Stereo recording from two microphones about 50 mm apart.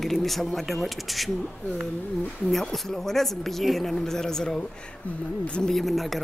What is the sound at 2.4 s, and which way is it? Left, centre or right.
Speech, centre.